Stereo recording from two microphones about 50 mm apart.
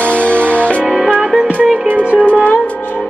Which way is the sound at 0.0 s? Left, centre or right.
Left.